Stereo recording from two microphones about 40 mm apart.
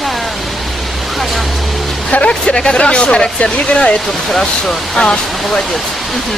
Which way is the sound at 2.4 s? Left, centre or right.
Centre.